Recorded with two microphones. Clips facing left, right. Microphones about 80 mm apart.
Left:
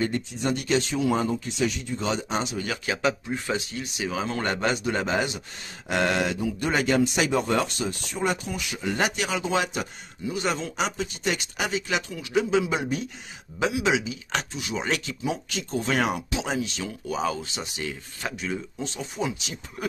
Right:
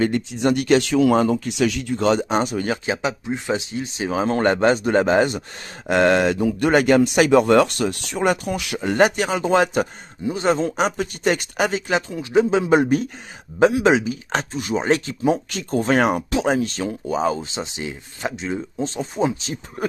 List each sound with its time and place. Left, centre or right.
0.0 s speech: right
2.7 s speech: right
10.2 s speech: right
11.9 s speech: right